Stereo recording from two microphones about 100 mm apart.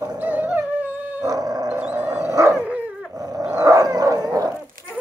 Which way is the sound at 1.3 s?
40° right (ahead or behind).